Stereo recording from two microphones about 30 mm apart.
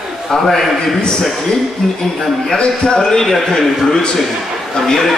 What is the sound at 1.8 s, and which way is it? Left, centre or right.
Speech, centre.